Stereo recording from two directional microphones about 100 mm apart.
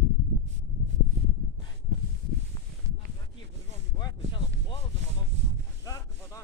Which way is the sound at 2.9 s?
30° right (ahead or behind).